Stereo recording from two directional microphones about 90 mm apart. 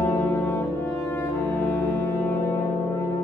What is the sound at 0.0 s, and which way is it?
Brass instrument, 25° left (ahead or behind).